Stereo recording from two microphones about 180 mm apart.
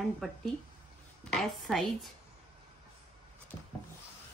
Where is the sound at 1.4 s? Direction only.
Centre (ahead or behind).